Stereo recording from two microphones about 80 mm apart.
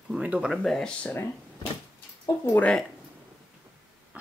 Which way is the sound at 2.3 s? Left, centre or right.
Left.